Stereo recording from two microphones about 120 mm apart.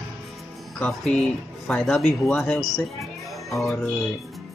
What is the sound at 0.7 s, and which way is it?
Speech, 10° left (ahead or behind).